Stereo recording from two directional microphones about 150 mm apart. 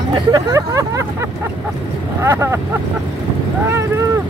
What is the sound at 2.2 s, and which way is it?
Speech, 15° right (ahead or behind).